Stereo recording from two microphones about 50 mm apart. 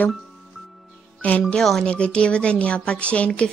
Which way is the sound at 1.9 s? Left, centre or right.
Left.